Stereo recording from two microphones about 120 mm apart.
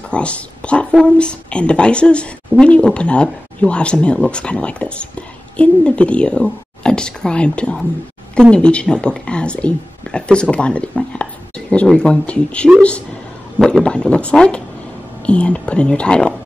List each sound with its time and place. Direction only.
0.1 s speech: 10° left (ahead or behind)